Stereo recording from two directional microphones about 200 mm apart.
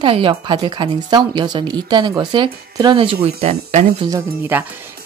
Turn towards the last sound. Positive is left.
turn(degrees=-15)  # may be behind; listen again after turning